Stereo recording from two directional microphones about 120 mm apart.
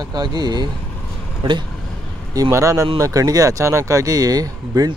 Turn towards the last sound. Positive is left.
turn(degrees=-30)  # may be behind; listen again after turning